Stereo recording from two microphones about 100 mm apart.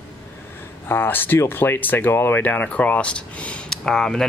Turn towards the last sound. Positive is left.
turn(degrees=5)  # may be behind; listen again after turning